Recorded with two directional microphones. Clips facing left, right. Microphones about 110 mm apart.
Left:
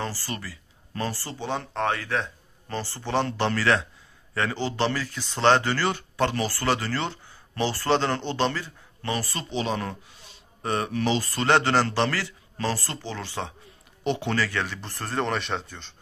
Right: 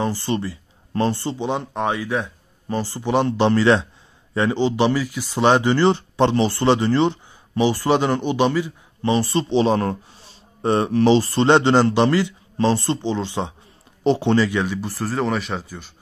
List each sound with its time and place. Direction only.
0.0 s speech: 20° right (ahead or behind); by 15.9 s 5° right (ahead or behind)